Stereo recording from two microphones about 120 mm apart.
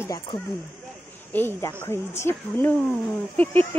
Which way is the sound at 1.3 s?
15° left (ahead or behind).